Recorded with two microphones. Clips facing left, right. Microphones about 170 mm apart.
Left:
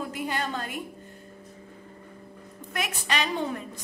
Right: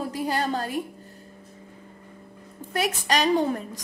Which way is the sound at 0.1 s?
35° right (ahead or behind).